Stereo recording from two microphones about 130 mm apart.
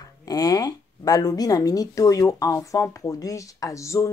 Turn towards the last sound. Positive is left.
turn(degrees=25)  # may be behind; listen again after turning